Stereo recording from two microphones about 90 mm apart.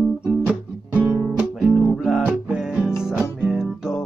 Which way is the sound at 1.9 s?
5° right (ahead or behind).